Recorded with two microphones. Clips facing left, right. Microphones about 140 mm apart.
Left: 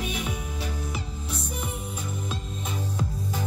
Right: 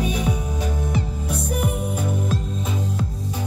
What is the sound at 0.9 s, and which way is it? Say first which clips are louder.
Music: right 9 dB; 55° right (ahead or behind).